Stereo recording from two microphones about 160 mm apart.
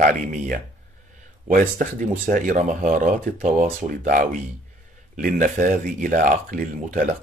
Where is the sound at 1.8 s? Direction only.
55° right (ahead or behind).